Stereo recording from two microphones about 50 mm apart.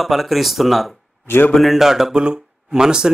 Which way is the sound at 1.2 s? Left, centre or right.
Left.